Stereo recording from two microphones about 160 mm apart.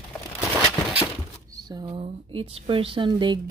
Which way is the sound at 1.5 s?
25° right (ahead or behind).